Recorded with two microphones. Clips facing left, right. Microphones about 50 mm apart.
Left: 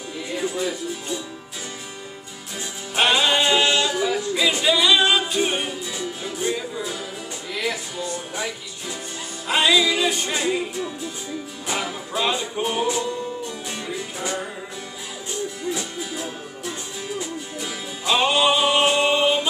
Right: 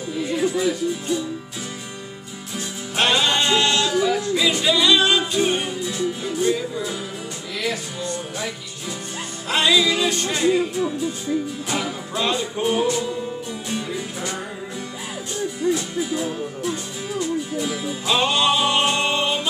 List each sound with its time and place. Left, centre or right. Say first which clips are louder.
0.6 s music: right 5 dB; centre
3.0 s male singing: left 1 dB; centre
6.4 s music: right 4 dB; centre
7.7 s speech: right 1 dB; centre
9.5 s music: even; centre
16.0 s music: right 6 dB; centre